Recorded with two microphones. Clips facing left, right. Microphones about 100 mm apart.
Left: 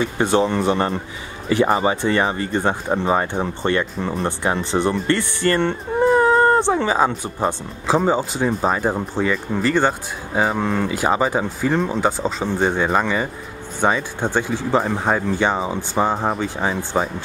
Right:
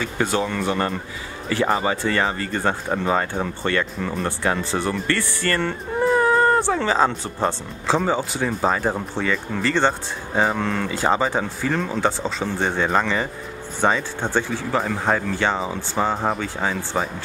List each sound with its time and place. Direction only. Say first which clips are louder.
0.0 s speech: left 5 dB; 25° left (ahead or behind)